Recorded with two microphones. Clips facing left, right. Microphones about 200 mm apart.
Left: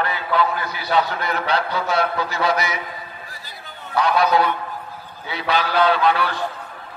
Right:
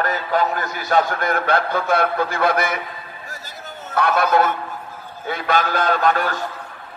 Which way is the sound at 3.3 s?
50° right (ahead or behind).